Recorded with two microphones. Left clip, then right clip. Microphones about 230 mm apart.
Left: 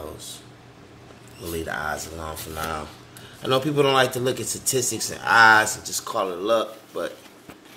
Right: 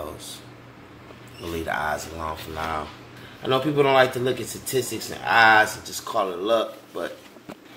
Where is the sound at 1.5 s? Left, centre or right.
Centre.